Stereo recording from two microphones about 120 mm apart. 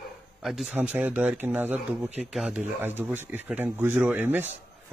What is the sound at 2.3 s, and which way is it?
Speech, 5° right (ahead or behind).